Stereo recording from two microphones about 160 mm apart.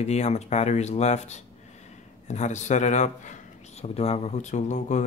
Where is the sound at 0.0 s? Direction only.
45° left (ahead or behind).